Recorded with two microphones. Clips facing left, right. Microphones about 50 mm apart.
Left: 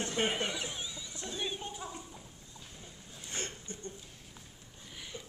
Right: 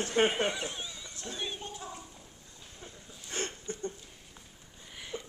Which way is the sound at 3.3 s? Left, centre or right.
Right.